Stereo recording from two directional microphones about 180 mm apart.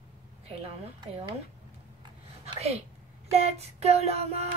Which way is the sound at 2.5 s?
35° right (ahead or behind).